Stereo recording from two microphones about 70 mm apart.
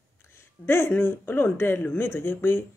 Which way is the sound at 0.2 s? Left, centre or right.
Left.